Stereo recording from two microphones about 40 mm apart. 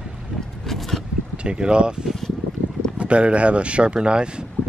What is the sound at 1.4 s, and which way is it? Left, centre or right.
Speech, right.